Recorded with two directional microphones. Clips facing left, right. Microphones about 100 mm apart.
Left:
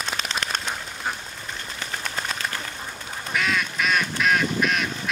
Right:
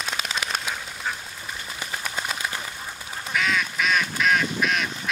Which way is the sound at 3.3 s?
Centre (ahead or behind).